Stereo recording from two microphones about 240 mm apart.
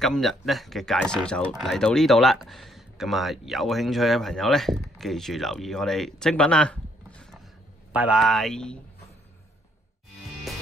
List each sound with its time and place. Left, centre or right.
0.0 s speech: centre